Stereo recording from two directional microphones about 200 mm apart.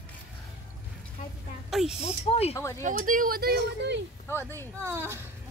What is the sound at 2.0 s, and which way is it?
Speech, 30° left (ahead or behind).